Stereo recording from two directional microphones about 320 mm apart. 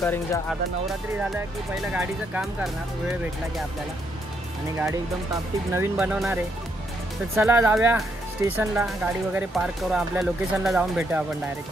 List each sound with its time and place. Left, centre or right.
0.0 s speech: centre
1.9 s speech: centre
5.8 s speech: centre